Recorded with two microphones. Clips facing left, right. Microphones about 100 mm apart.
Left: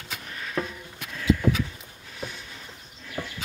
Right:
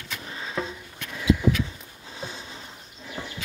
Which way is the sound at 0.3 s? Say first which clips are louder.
Left 1 dB; 20° right (ahead or behind).